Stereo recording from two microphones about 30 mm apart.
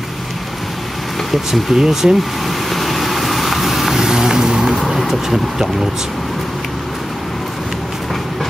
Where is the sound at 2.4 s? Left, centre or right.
Centre.